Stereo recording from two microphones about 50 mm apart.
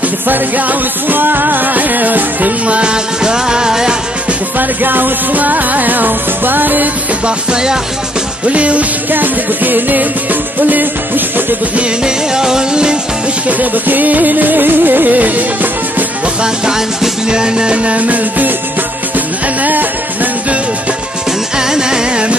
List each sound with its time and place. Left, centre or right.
0.3 s music: right; by 3.9 s centre
4.6 s music: right
7.2 s music: centre
9.1 s music: right
12.0 s music: centre
13.5 s music: right
16.4 s music: centre; by 19.9 s right
21.5 s music: centre